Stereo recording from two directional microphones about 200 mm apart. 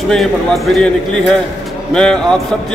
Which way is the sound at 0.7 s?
Centre (ahead or behind).